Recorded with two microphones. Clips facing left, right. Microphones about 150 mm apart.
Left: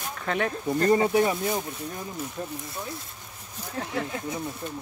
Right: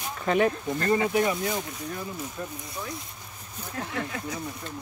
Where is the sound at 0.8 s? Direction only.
35° left (ahead or behind).